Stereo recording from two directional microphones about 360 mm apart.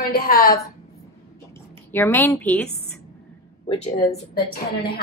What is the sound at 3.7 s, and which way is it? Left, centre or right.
Speech, centre.